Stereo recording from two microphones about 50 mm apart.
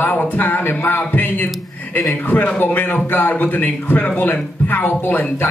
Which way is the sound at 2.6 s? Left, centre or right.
Left.